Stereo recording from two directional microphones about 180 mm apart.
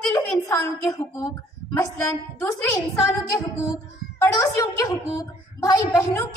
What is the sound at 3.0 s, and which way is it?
A woman's voice, 20° left (ahead or behind).